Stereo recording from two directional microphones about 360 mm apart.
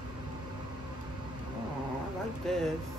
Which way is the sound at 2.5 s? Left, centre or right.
Centre.